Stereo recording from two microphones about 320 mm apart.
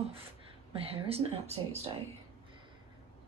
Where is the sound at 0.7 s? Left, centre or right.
Centre.